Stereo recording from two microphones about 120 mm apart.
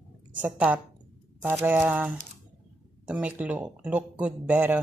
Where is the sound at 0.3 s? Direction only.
15° right (ahead or behind).